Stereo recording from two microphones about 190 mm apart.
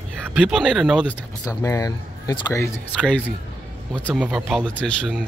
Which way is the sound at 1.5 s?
20° left (ahead or behind).